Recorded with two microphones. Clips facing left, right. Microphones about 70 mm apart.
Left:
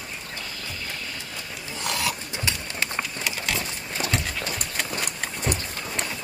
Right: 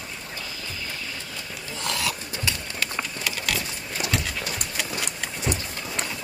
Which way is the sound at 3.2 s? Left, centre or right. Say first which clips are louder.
Right 1 dB; left.